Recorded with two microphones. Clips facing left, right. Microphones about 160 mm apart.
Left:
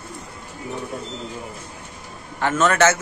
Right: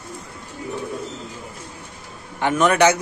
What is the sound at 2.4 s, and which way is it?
Speech, 15° right (ahead or behind).